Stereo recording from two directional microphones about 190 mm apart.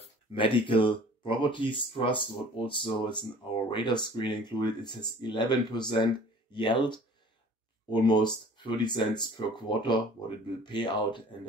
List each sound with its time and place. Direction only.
0.0 s speech: 25° left (ahead or behind)